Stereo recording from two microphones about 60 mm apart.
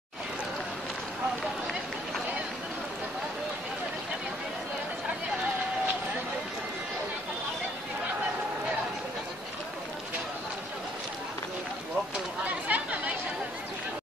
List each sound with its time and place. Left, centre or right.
12.4 s chatter: right